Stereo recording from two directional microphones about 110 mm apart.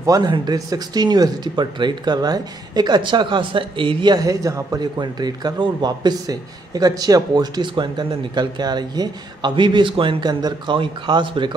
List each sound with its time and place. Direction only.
0.0 s speech: 30° right (ahead or behind)